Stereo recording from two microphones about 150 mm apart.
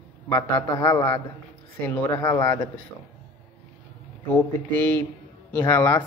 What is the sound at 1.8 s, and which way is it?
Speech, 15° left (ahead or behind).